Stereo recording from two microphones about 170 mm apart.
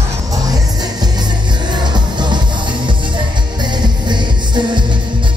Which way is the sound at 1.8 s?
25° right (ahead or behind).